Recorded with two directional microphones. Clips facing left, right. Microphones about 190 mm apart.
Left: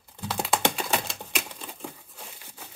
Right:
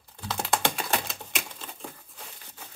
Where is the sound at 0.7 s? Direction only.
Centre (ahead or behind).